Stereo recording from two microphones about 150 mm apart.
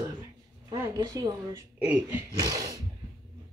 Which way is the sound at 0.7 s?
25° right (ahead or behind).